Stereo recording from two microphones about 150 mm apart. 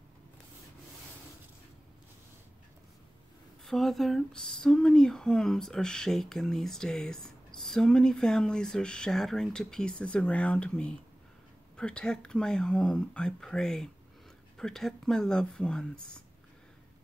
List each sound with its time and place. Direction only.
3.6 s speech: centre (ahead or behind)